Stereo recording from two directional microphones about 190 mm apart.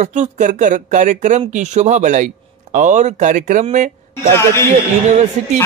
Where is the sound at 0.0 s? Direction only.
40° right (ahead or behind).